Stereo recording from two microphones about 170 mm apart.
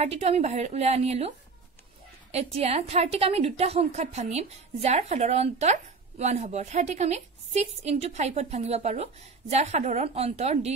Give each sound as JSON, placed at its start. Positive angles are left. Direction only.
{"t": 0.0, "sound": "a woman's voice", "side_deg": -40}
{"t": 2.3, "sound": "a woman's voice", "side_deg": -35}